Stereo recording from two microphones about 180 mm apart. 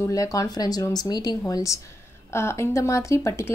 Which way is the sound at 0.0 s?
20° left (ahead or behind).